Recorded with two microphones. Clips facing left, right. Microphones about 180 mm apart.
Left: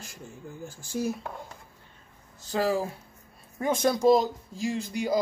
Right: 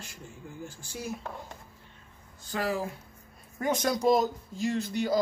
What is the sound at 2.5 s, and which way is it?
Speech, 30° left (ahead or behind).